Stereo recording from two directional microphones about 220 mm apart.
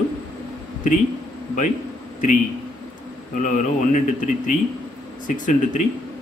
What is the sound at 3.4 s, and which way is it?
Speech, 35° left (ahead or behind).